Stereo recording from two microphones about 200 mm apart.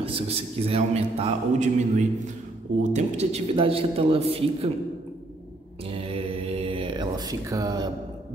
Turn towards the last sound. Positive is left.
turn(degrees=-20)  # may be behind; listen again after turning